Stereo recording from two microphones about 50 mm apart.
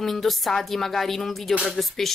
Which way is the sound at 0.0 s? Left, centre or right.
Centre.